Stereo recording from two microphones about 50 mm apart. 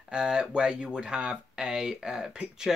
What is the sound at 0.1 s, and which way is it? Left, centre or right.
Speech, centre.